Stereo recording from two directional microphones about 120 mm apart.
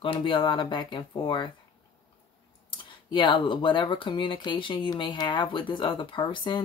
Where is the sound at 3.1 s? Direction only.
40° left (ahead or behind).